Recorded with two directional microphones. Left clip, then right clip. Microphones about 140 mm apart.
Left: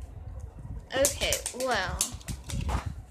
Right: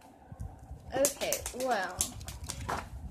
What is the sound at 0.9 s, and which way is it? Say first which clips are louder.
Speech: left 3 dB; 5° right (ahead or behind).